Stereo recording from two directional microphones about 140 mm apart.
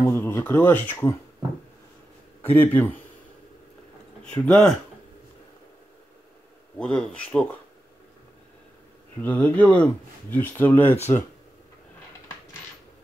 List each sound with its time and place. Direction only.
0.0 s speech: 15° left (ahead or behind)
2.4 s speech: 15° left (ahead or behind)
4.2 s speech: 5° left (ahead or behind)
6.8 s speech: 5° left (ahead or behind)
9.2 s speech: 10° left (ahead or behind)